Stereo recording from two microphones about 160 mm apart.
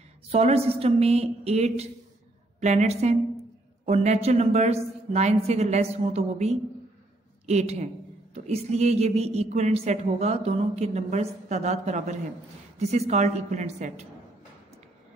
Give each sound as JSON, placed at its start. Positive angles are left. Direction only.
{"t": 0.3, "sound": "a woman's voice", "side_deg": -40}